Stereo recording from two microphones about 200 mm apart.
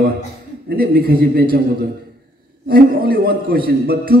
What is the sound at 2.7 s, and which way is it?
A man's voice, 50° right (ahead or behind).